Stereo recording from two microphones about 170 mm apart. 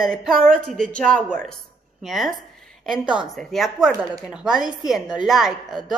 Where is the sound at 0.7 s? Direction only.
5° left (ahead or behind).